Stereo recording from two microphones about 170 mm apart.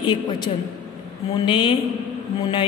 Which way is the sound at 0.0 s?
25° left (ahead or behind).